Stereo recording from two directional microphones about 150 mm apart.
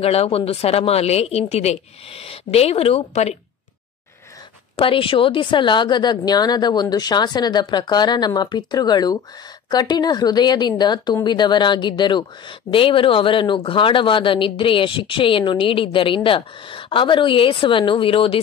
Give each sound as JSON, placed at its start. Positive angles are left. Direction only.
{"t": 0.0, "sound": "speech", "side_deg": 40}
{"t": 4.7, "sound": "a woman's voice", "side_deg": 35}